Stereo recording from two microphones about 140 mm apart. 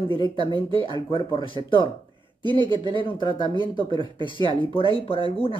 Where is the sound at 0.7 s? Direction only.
40° left (ahead or behind).